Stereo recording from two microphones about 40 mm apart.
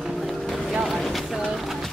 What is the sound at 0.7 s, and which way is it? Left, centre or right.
Boat, centre.